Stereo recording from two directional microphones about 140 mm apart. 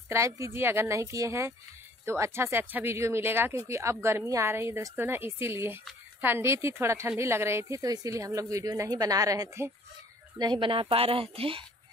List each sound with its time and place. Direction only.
0.1 s speech: 20° right (ahead or behind)
10.4 s speech: 35° right (ahead or behind)